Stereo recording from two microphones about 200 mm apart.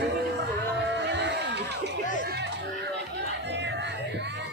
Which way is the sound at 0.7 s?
60° right (ahead or behind).